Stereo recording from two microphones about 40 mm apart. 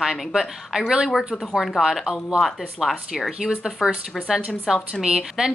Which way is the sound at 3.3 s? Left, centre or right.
Centre.